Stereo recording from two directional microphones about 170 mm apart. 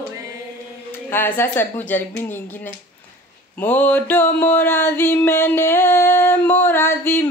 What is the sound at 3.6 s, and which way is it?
Mantra, 10° left (ahead or behind).